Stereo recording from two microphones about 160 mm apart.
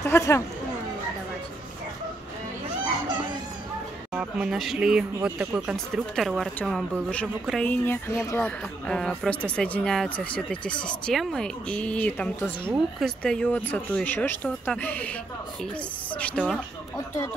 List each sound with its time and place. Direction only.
0.0 s speech: 20° left (ahead or behind)
4.1 s speech: 5° right (ahead or behind); by 8.4 s 20° left (ahead or behind)
8.4 s speech: 5° left (ahead or behind)
16.2 s speech: 5° left (ahead or behind)